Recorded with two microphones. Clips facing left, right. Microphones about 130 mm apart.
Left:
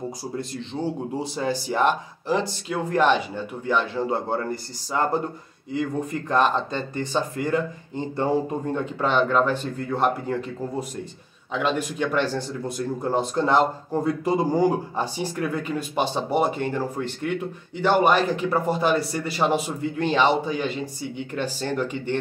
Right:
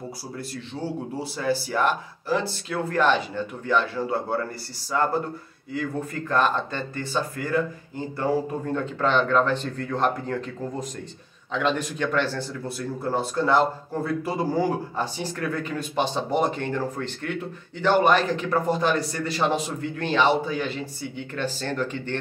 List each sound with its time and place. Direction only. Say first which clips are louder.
0.4 s speech: left 2 dB; 20° left (ahead or behind)